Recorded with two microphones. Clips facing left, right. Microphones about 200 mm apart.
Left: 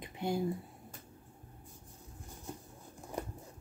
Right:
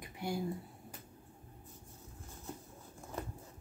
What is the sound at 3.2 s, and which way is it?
Clip-clop, 15° left (ahead or behind).